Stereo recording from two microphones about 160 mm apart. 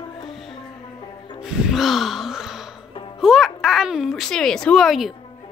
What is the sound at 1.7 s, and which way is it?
Gasp, centre (ahead or behind).